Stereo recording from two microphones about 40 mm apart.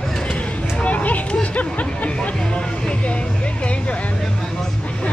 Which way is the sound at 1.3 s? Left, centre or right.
Left.